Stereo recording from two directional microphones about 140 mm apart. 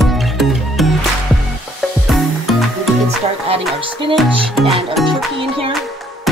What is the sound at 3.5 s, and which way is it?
Music, 40° right (ahead or behind).